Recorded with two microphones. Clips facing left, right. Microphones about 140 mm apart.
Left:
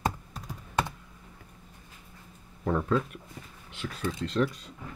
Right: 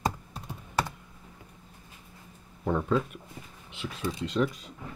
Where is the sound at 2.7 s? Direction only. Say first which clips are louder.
Even; 5° right (ahead or behind).